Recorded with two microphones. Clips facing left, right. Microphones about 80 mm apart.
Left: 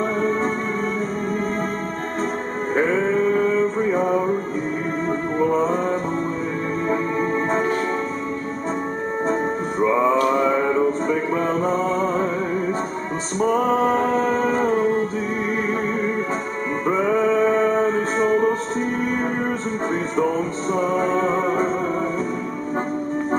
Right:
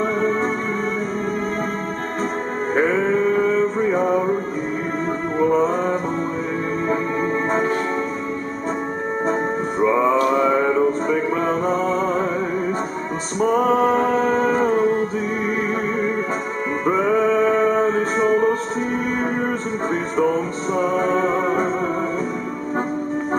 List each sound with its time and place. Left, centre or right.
3.9 s music: centre
5.4 s mantra: centre
6.9 s music: centre
9.8 s music: centre
13.4 s music: centre
16.8 s music: centre
19.9 s music: centre